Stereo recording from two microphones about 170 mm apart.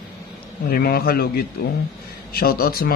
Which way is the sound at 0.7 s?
65° left (ahead or behind).